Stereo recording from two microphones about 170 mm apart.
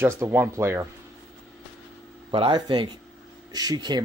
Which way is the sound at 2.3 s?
30° right (ahead or behind).